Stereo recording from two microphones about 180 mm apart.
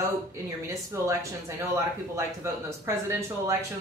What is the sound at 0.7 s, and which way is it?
A woman's voice, 15° right (ahead or behind).